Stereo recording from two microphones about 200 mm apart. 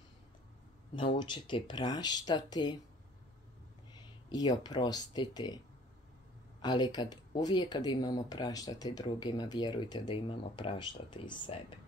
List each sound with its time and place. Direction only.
0.9 s speech: 25° left (ahead or behind)
4.3 s speech: 20° left (ahead or behind)
6.6 s speech: 20° left (ahead or behind)